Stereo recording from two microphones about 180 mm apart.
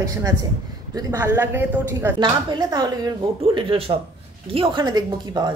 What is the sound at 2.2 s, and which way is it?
A woman's voice, 25° right (ahead or behind).